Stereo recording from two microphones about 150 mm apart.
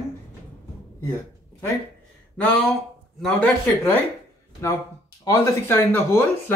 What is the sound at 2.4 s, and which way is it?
Speech, 5° left (ahead or behind).